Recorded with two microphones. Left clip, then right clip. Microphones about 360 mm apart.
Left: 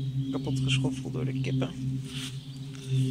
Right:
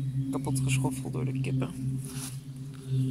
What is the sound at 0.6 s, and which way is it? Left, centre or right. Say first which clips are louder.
Speech: left 2 dB; centre.